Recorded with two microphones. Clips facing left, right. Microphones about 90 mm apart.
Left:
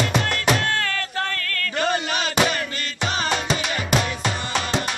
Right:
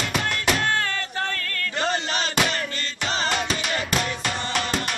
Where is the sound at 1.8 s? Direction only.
15° left (ahead or behind).